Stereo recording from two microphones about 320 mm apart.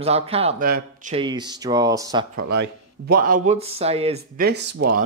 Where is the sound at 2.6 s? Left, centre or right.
Right.